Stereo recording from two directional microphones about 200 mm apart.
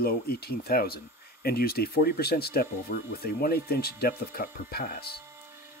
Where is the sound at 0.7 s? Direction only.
50° left (ahead or behind).